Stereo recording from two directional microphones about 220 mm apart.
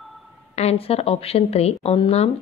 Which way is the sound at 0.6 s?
25° left (ahead or behind).